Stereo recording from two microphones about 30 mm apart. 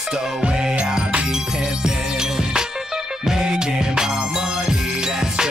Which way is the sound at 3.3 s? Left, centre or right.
Right.